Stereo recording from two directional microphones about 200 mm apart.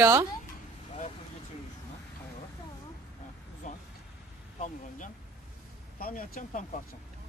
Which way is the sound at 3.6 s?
35° left (ahead or behind).